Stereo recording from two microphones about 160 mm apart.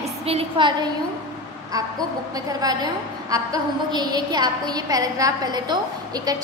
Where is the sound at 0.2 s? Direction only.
40° right (ahead or behind).